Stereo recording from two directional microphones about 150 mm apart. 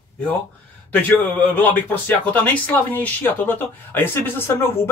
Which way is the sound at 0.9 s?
10° left (ahead or behind).